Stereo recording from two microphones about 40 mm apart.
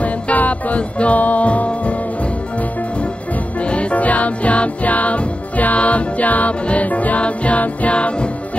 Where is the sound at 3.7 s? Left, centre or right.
Left.